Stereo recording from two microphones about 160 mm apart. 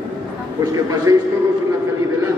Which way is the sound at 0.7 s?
20° right (ahead or behind).